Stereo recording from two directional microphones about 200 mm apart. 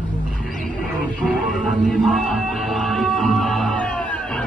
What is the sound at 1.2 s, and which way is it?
Music, centre (ahead or behind).